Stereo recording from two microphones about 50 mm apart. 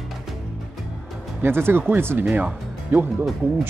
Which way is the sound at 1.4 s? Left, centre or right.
Right.